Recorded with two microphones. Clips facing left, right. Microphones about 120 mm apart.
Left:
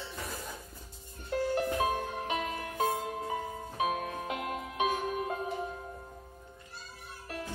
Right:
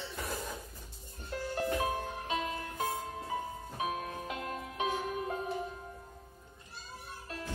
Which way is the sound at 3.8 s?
65° left (ahead or behind).